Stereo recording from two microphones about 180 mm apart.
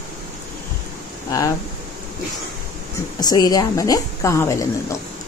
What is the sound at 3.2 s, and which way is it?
Speech, 20° left (ahead or behind).